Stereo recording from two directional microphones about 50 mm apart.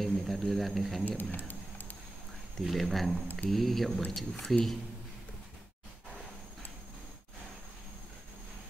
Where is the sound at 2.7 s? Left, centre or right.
Centre.